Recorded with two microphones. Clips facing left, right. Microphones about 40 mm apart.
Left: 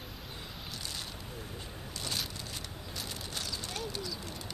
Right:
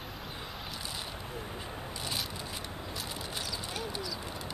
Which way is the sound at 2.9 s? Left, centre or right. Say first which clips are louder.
Even; centre.